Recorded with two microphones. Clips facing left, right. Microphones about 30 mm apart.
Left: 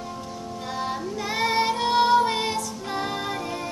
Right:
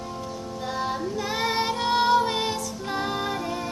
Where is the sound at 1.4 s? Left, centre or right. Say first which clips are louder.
Left 4 dB; centre.